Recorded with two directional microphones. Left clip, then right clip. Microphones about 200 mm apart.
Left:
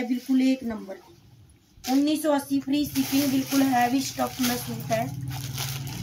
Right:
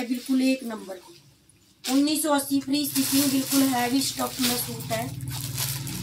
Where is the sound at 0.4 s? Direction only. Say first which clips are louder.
Even; 5° left (ahead or behind).